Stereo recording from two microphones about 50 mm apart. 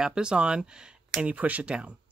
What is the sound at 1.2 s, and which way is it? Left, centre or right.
Speech, right.